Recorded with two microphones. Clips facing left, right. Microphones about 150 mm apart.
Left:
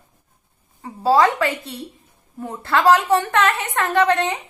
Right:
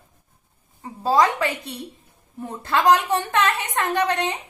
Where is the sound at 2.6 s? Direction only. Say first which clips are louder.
Left 2 dB; 15° right (ahead or behind).